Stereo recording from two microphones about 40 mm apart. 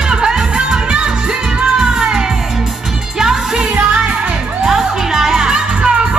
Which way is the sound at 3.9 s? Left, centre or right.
Right.